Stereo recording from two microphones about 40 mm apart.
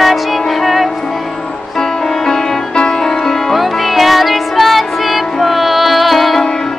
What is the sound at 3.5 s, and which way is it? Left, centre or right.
Music, centre.